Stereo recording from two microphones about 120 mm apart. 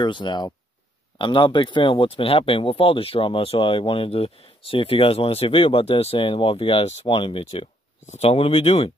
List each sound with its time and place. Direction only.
0.0 s speech: 40° left (ahead or behind)
8.1 s speech: 60° left (ahead or behind)